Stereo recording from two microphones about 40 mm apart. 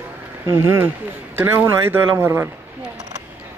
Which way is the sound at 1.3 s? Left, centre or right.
Right.